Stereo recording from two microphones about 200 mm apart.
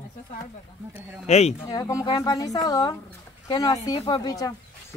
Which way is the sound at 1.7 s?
15° left (ahead or behind).